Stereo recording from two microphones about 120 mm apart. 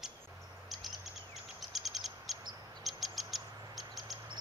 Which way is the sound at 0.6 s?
Centre (ahead or behind).